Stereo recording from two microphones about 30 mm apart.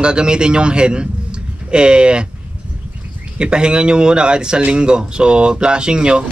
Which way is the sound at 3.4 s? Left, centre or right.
Right.